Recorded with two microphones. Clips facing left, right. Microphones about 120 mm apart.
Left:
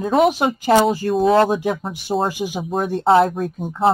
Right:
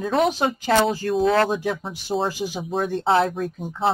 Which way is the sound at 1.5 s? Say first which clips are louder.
Left 4 dB; 15° left (ahead or behind).